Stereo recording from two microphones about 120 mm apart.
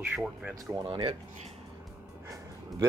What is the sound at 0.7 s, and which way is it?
Speech, 45° right (ahead or behind).